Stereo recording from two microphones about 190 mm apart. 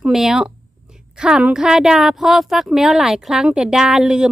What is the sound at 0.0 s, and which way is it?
A woman's voice, centre (ahead or behind).